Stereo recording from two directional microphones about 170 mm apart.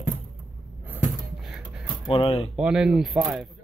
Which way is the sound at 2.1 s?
30° left (ahead or behind).